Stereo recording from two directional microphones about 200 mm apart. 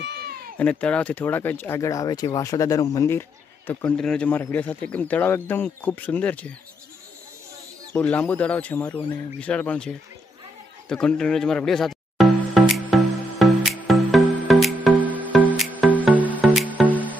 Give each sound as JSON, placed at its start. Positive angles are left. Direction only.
{"t": 0.0, "sound": "cat", "side_deg": -55}
{"t": 0.6, "sound": "speech", "side_deg": 5}
{"t": 7.9, "sound": "speech", "side_deg": 5}
{"t": 10.9, "sound": "music", "side_deg": 5}